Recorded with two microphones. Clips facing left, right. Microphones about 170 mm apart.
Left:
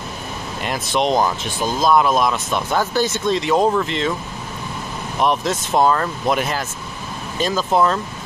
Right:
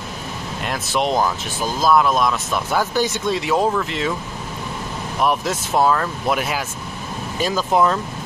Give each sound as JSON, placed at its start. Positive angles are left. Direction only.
{"t": 0.7, "sound": "speech", "side_deg": -5}
{"t": 5.2, "sound": "speech", "side_deg": -5}